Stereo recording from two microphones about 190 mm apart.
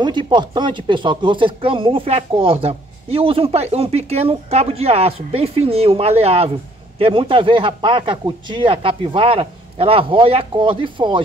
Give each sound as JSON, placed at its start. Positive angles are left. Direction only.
{"t": 0.0, "sound": "speech", "side_deg": -25}